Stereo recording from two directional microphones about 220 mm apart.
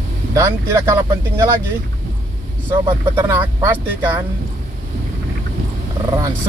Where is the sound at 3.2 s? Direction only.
10° right (ahead or behind).